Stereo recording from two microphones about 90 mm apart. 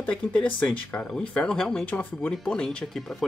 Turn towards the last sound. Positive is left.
turn(degrees=5)  # may be behind; listen again after turning